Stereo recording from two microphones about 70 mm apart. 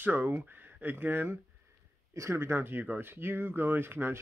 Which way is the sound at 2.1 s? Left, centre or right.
Right.